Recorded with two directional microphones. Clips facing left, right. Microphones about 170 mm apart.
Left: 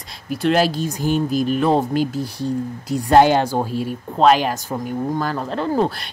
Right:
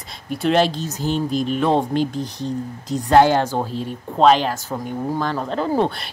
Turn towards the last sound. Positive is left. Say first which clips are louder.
# even
turn(degrees=0)  # may be behind; listen again after turning